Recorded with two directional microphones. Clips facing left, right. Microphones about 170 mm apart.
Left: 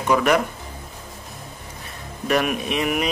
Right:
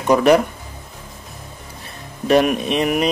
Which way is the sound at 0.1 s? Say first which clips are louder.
Right 5 dB; 35° right (ahead or behind).